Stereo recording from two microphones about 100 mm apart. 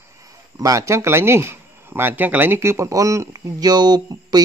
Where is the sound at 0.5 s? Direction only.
35° right (ahead or behind).